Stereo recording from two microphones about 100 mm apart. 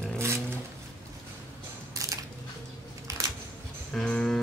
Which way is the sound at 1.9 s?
35° right (ahead or behind).